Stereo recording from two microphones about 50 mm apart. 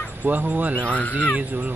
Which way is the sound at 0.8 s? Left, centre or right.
Left.